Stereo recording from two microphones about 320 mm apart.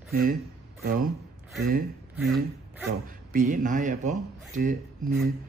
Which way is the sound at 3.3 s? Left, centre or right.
Right.